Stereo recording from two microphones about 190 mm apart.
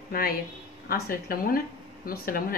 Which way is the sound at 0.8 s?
50° left (ahead or behind).